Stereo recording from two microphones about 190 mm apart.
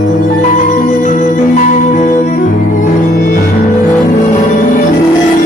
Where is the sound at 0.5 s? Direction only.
45° left (ahead or behind).